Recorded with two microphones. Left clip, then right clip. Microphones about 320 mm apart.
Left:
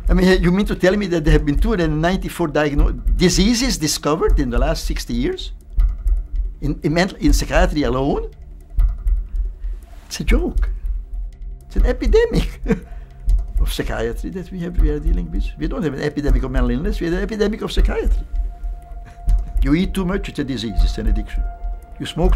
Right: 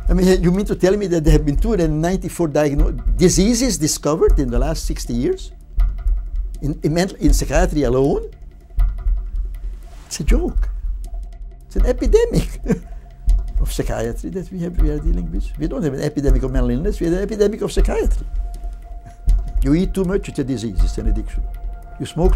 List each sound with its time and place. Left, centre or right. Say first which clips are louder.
0.0 s a man's voice: even; right
6.6 s a man's voice: left 1 dB; right
10.0 s a man's voice: left 1 dB; right
11.7 s a man's voice: right 1 dB; right
19.3 s a sound: even; centre
19.6 s a man's voice: right 1 dB; right